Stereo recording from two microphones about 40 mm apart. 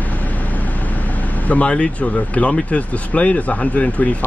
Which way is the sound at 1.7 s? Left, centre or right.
Left.